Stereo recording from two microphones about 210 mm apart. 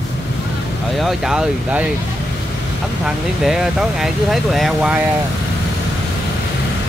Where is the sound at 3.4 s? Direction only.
Centre (ahead or behind).